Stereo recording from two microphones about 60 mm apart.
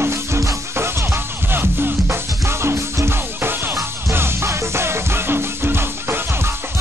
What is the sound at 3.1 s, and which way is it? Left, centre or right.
Music, right.